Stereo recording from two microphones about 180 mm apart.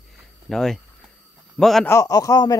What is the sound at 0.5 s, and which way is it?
Speech, 5° left (ahead or behind).